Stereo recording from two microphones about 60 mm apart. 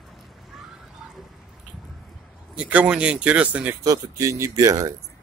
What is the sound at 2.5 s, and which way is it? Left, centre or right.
Speech, right.